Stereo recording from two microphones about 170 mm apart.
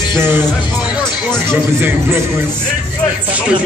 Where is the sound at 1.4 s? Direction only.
15° right (ahead or behind).